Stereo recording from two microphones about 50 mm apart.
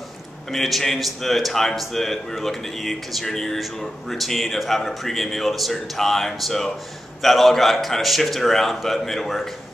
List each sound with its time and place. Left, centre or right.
0.5 s a man's voice: centre